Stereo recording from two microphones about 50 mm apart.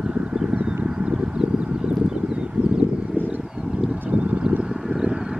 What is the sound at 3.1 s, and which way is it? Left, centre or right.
Vehicle, right.